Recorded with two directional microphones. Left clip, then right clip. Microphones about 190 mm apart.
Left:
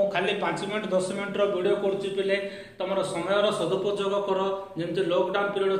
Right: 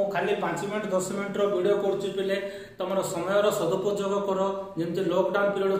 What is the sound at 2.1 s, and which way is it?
A man's voice, 15° right (ahead or behind).